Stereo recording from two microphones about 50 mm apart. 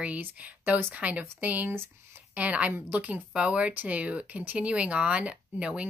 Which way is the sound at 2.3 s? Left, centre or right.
Right.